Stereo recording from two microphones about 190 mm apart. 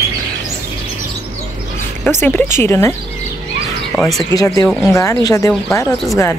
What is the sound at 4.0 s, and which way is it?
Speech, centre (ahead or behind).